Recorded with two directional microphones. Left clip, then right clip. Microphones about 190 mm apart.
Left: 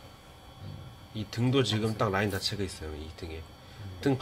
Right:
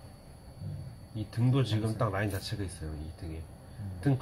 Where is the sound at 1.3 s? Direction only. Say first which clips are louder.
Left 5 dB; 50° left (ahead or behind).